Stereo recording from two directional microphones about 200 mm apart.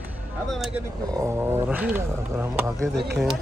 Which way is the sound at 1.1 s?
15° right (ahead or behind).